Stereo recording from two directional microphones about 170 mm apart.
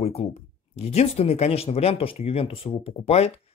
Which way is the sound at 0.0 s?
40° left (ahead or behind).